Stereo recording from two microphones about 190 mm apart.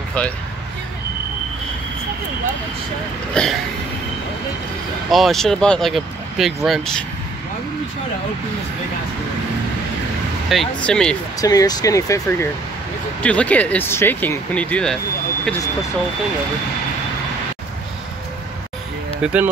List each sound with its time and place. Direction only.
3.4 s speech: 5° left (ahead or behind)
5.1 s speech: centre (ahead or behind)
10.5 s speech: 5° left (ahead or behind)
11.4 s speech: 20° left (ahead or behind)
19.2 s speech: 10° right (ahead or behind)